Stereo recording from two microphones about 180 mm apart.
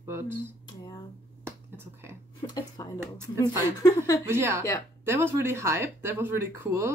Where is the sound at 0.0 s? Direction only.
15° right (ahead or behind).